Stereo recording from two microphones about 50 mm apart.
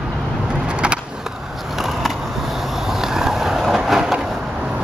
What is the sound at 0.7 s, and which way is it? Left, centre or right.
Skateboard, right.